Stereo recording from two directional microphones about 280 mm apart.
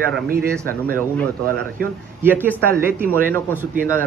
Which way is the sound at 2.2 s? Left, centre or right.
Centre.